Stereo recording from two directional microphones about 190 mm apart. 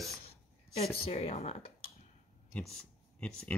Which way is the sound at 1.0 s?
35° left (ahead or behind).